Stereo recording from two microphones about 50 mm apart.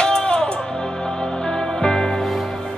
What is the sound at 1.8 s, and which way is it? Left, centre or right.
Music, centre.